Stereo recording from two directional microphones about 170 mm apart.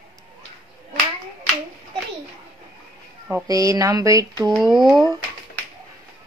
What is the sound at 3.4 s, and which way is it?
Speech, 20° right (ahead or behind).